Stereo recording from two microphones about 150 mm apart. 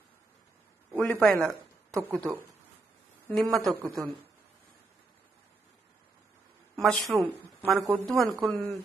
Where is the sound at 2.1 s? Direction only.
25° right (ahead or behind).